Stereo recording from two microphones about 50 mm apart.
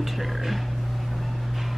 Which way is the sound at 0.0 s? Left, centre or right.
Centre.